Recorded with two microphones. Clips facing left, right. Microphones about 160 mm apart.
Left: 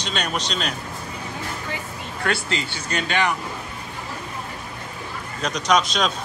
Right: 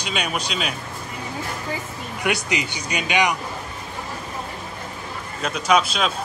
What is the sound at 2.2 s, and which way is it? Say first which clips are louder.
Speech: right 1 dB; 15° right (ahead or behind).